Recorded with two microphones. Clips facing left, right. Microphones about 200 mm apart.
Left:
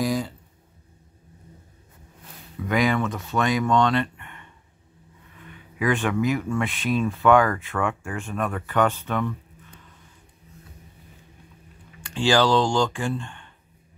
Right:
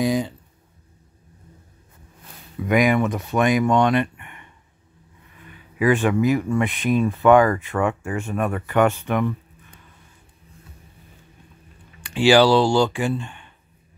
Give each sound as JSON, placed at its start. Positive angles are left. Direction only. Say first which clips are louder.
{"t": 0.0, "sound": "a sound", "louder": "right 4 dB", "side_deg": -20}
{"t": 2.7, "sound": "speech", "louder": "right 4 dB", "side_deg": -15}
{"t": 5.8, "sound": "speech", "louder": "right 5 dB", "side_deg": -10}
{"t": 12.0, "sound": "speech", "louder": "right 5 dB", "side_deg": -15}